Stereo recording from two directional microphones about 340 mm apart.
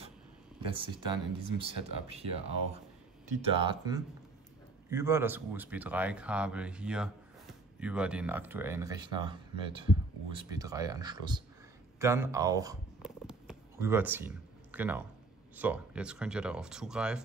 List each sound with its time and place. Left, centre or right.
0.7 s speech: centre
10.3 s speech: centre
12.0 s a sound: centre
15.5 s speech: centre